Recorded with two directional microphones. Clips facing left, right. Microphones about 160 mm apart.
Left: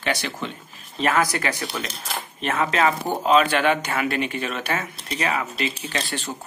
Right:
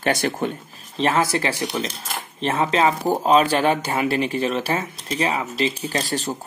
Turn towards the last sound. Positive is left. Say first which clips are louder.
# right 4 dB
turn(degrees=-40)  # may be behind; listen again after turning